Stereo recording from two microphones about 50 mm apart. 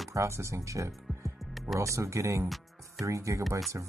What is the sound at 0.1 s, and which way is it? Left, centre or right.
Speech, right.